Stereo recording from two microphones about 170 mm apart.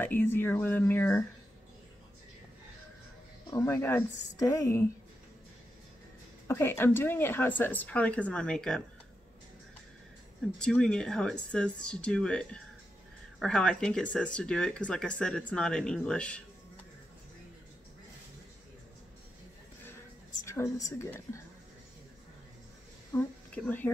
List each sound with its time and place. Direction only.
0.0 s a woman's voice: 10° left (ahead or behind)
3.4 s a woman's voice: 15° left (ahead or behind)
6.4 s a woman's voice: 15° left (ahead or behind)
10.6 s speech: 5° left (ahead or behind)
20.4 s a woman's voice: 20° left (ahead or behind)
23.1 s speech: 10° left (ahead or behind)